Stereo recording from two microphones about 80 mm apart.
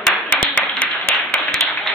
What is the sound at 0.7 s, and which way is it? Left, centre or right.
Clapping, centre.